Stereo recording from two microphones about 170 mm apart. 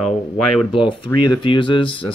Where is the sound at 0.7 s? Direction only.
30° left (ahead or behind).